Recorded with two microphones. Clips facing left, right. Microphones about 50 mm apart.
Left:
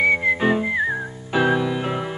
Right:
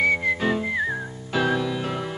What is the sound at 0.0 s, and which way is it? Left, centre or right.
Whistling, centre.